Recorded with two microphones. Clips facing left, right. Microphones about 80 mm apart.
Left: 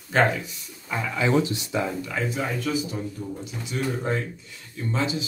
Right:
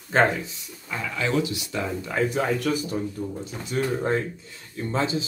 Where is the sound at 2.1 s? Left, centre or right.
Right.